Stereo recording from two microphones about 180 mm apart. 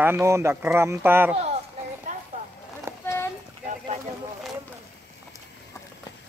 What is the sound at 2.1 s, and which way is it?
Clip-clop, 45° right (ahead or behind).